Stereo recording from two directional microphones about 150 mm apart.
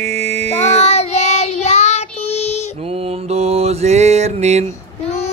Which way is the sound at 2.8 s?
40° right (ahead or behind).